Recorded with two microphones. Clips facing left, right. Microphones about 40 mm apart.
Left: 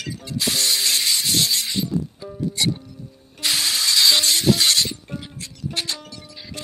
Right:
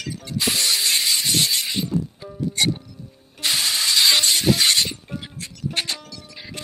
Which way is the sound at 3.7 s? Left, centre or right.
Centre.